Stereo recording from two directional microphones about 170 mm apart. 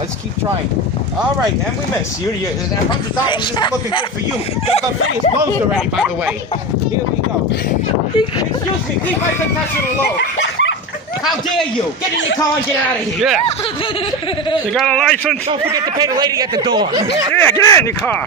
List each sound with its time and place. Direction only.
3.3 s speech: 25° left (ahead or behind)
10.1 s a sound: 90° left
14.7 s a man's voice: 5° left (ahead or behind)
15.6 s speech: 25° right (ahead or behind)
17.3 s speech: 10° left (ahead or behind)